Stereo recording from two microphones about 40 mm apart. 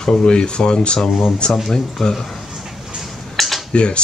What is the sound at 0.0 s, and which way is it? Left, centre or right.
Speech, centre.